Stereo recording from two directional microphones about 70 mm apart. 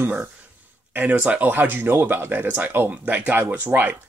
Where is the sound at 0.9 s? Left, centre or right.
Right.